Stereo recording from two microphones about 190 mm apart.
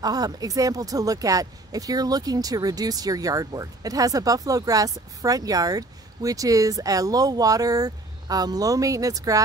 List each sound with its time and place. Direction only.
0.0 s speech: 20° right (ahead or behind)